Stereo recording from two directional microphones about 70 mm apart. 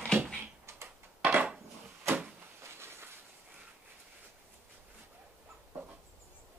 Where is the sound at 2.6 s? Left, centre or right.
Right.